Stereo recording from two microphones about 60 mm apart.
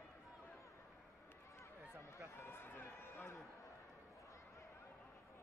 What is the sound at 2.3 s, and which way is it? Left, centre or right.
Run, left.